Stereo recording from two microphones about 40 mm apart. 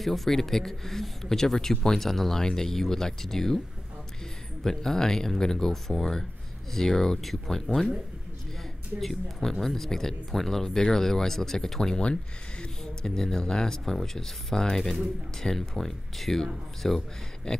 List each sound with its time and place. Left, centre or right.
0.0 s a man's voice: centre
4.6 s a man's voice: centre
9.0 s a man's voice: centre; by 12.6 s left
13.0 s a man's voice: centre
17.5 s a sound: centre